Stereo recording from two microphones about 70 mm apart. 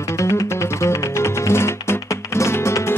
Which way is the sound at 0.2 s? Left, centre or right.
Left.